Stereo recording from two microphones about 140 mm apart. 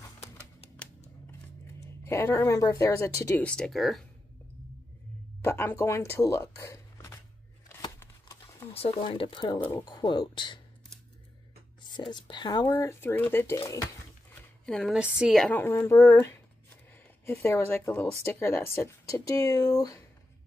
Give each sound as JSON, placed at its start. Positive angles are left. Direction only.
{"t": 1.8, "sound": "speech", "side_deg": 20}
{"t": 5.4, "sound": "speech", "side_deg": 15}
{"t": 8.0, "sound": "a sound", "side_deg": 20}
{"t": 8.7, "sound": "speech", "side_deg": 45}
{"t": 9.6, "sound": "speech", "side_deg": 20}
{"t": 12.1, "sound": "speech", "side_deg": 35}
{"t": 12.6, "sound": "speech", "side_deg": 15}
{"t": 14.7, "sound": "a woman's voice", "side_deg": 5}
{"t": 15.5, "sound": "speech", "side_deg": 15}